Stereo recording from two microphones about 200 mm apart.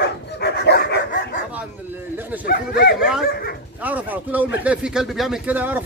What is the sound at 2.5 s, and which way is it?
Bow-wow, 45° left (ahead or behind).